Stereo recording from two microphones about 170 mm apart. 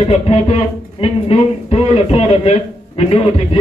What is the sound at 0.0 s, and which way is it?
A man's voice, 35° left (ahead or behind).